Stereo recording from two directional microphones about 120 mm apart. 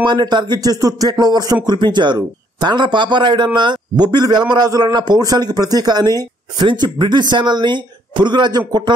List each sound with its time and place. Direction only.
0.0 s speech: 40° right (ahead or behind)